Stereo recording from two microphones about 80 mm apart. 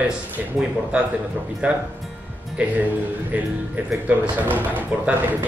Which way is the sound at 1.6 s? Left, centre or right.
Centre.